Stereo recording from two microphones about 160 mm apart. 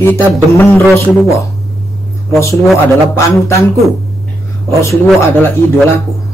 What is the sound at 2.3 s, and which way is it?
Speech, 20° left (ahead or behind).